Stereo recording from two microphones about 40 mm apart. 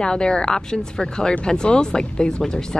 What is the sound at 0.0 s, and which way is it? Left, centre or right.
Speech, left.